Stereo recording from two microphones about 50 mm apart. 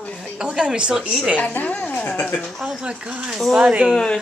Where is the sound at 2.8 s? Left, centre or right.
Right.